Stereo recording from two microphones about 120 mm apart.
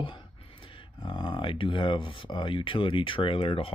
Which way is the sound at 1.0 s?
40° left (ahead or behind).